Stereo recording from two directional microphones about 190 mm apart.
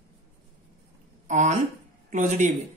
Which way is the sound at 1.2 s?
40° right (ahead or behind).